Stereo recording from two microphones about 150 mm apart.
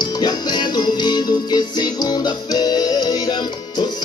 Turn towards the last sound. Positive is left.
turn(degrees=30)  # may be behind; listen again after turning